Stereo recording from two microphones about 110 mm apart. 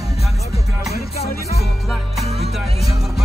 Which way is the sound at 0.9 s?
70° left (ahead or behind).